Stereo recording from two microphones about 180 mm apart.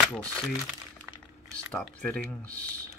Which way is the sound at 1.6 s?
5° left (ahead or behind).